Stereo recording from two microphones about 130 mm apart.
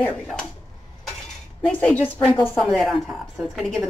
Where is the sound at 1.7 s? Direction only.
10° left (ahead or behind).